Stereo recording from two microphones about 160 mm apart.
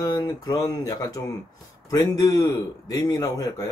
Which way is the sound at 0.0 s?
25° left (ahead or behind).